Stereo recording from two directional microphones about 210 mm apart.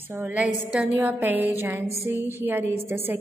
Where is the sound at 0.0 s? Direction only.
10° right (ahead or behind).